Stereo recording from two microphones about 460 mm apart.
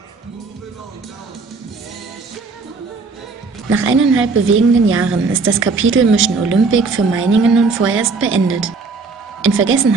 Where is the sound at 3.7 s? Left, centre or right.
Right.